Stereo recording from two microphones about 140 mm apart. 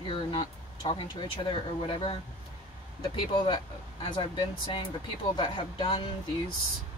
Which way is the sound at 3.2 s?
35° left (ahead or behind).